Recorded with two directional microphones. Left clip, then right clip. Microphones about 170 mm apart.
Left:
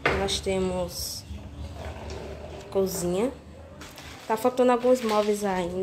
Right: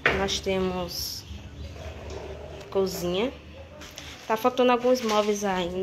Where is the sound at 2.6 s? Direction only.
15° left (ahead or behind).